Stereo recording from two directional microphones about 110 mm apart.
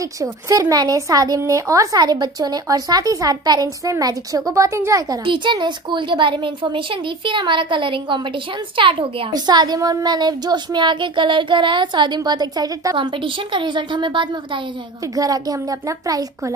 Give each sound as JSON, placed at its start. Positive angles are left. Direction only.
{"t": 0.0, "sound": "a child's voice", "side_deg": -30}
{"t": 5.2, "sound": "a child's voice", "side_deg": -45}
{"t": 12.9, "sound": "speech", "side_deg": -50}
{"t": 15.1, "sound": "a child's voice", "side_deg": -35}